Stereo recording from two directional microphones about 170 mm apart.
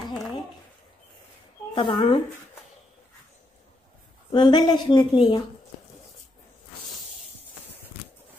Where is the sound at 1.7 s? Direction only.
30° left (ahead or behind).